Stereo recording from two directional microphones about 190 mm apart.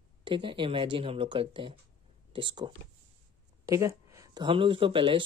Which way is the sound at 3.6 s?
15° right (ahead or behind).